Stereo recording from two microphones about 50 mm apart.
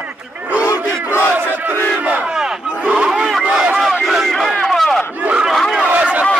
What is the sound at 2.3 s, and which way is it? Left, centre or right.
Battle cry, centre.